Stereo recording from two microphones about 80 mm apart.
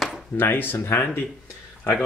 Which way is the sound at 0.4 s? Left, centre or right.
Left.